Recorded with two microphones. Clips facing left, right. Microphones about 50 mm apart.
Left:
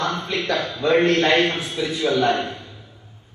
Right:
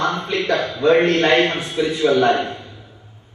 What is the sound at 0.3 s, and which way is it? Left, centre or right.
Speech, right.